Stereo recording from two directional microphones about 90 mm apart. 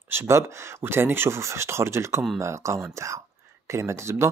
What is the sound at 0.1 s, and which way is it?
Speech, 30° right (ahead or behind).